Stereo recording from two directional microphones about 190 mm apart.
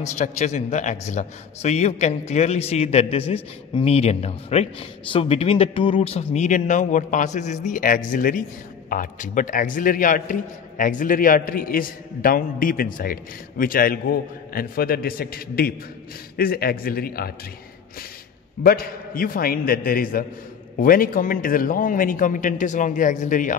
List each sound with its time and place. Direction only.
0.0 s a man's voice: 40° left (ahead or behind); by 17.3 s 55° left (ahead or behind)
18.6 s a man's voice: 50° left (ahead or behind)